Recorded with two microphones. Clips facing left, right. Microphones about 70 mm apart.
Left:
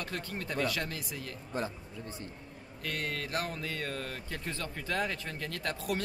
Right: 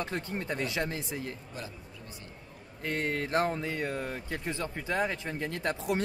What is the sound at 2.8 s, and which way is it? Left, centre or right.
Speech, right.